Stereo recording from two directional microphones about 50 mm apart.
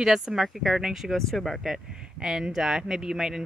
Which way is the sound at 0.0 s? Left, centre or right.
Centre.